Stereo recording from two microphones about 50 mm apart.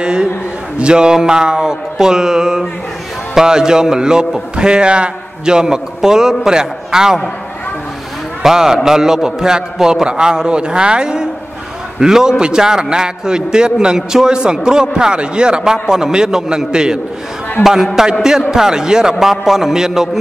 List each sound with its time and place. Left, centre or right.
0.0 s a man's voice: centre
8.4 s a man's voice: centre
17.6 s a man's voice: left
18.0 s a man's voice: centre